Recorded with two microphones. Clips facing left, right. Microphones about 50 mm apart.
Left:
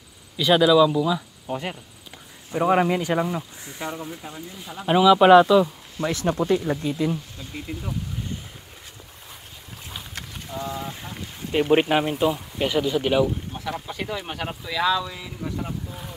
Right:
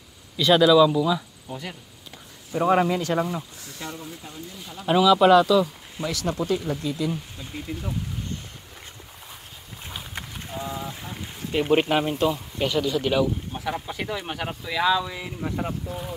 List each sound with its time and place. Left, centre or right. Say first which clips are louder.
0.4 s speech: even; centre
1.5 s speech: left 6 dB; left
2.5 s speech: left 1 dB; centre; by 7.1 s left
9.8 s a sound: right 1 dB; centre
11.7 s speech: left 1 dB; centre
13.7 s speech: even; centre
15.9 s speech: right 5 dB; centre